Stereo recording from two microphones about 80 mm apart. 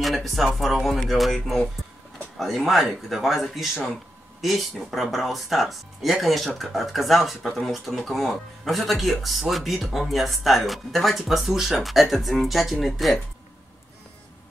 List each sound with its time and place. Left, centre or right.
0.0 s speech: centre